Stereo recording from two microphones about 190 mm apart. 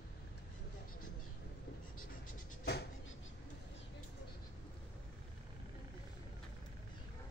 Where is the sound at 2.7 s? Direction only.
60° left (ahead or behind).